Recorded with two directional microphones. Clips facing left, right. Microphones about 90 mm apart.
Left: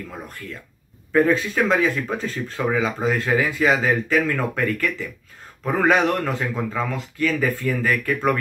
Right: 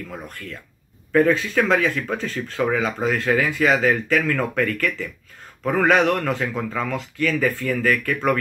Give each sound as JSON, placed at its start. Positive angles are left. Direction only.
{"t": 1.1, "sound": "a man's voice", "side_deg": 25}